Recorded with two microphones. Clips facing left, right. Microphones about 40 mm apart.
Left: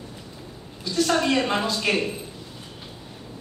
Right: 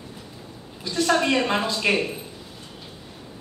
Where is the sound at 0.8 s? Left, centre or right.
Centre.